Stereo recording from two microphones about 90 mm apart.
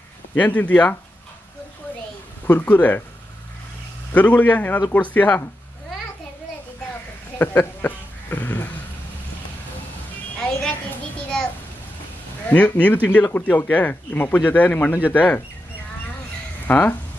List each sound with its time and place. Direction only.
0.3 s a man's voice: 15° left (ahead or behind)
2.4 s a man's voice: 20° left (ahead or behind)
4.1 s a man's voice: 15° left (ahead or behind)
7.3 s a sound: 20° left (ahead or behind)
10.3 s a sound: 10° left (ahead or behind)
12.4 s a man's voice: 15° left (ahead or behind)
16.6 s speech: 20° left (ahead or behind)